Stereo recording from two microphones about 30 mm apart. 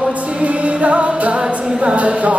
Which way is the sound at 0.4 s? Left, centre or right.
Right.